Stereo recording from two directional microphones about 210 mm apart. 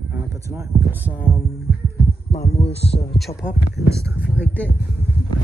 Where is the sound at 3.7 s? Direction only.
15° right (ahead or behind).